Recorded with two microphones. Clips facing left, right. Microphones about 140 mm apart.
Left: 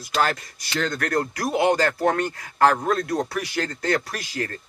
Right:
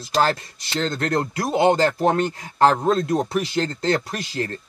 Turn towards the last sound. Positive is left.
turn(degrees=-25)  # may be behind; listen again after turning